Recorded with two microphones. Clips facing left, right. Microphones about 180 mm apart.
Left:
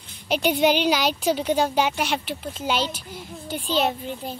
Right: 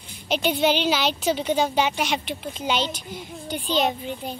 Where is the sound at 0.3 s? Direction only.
10° left (ahead or behind).